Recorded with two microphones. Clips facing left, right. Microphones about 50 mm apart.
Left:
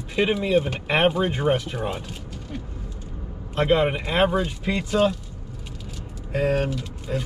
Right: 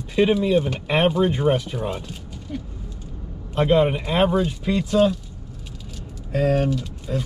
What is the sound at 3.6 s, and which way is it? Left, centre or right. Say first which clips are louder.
Speech: right 2 dB; centre.